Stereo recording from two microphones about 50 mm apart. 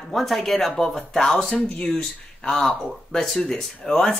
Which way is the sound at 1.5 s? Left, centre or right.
Left.